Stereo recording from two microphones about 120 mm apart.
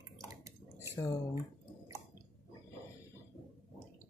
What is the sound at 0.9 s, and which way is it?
Speech, 25° left (ahead or behind).